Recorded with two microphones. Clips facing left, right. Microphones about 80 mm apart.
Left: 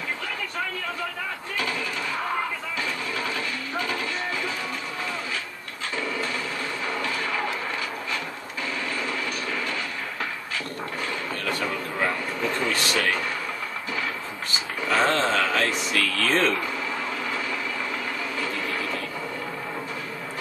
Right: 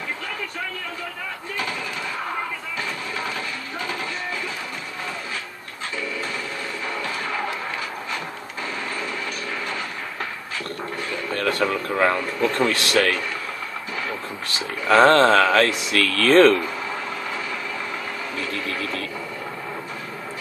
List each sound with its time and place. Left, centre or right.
11.3 s speech: right
14.9 s speech: right